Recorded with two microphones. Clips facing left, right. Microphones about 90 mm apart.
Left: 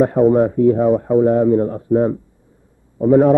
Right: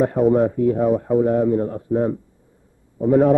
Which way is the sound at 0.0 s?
40° left (ahead or behind).